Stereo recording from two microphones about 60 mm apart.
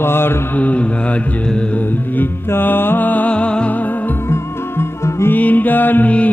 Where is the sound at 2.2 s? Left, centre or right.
Left.